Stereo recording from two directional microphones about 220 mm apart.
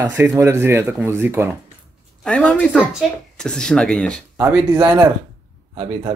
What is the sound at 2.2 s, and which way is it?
Speech, 5° left (ahead or behind).